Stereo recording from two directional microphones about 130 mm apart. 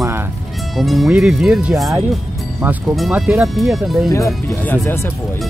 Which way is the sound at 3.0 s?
5° right (ahead or behind).